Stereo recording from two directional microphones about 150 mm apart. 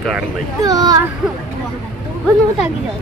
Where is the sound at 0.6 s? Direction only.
25° right (ahead or behind).